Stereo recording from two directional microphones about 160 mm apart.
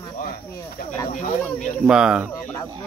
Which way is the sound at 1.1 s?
50° left (ahead or behind).